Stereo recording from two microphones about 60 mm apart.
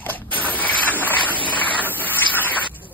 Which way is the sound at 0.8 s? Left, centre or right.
Right.